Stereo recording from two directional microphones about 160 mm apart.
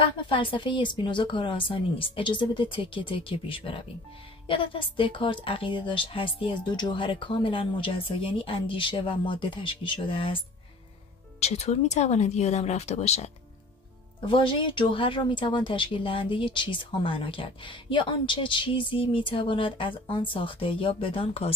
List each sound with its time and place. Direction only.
0.3 s speech: 30° left (ahead or behind)
14.2 s speech: 30° left (ahead or behind)